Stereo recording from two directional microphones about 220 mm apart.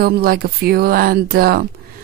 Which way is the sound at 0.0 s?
45° right (ahead or behind).